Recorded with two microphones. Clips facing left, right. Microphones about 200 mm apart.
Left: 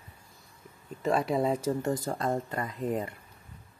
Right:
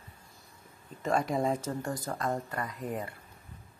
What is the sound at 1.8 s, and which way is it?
Speech, 25° left (ahead or behind).